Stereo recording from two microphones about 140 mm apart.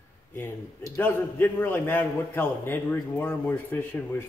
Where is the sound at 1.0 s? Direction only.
15° left (ahead or behind).